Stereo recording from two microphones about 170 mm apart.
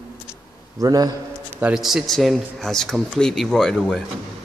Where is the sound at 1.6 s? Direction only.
5° right (ahead or behind).